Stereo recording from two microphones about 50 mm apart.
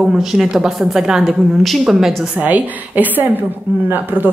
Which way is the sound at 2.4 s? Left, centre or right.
Right.